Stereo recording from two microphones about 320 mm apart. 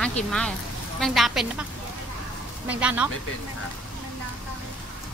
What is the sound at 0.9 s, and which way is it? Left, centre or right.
Speech, centre.